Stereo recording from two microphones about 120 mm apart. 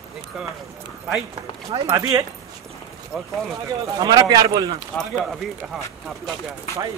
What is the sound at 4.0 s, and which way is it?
Speech, 35° right (ahead or behind).